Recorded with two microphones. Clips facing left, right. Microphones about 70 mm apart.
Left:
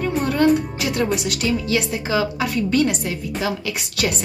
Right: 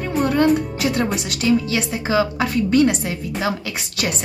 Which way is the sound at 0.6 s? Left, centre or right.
Right.